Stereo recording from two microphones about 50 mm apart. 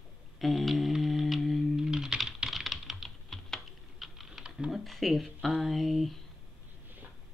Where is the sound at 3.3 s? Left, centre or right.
Centre.